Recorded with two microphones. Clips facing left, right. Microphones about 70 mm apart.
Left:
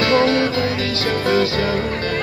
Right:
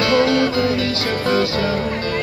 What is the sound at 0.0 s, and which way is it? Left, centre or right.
Music, left.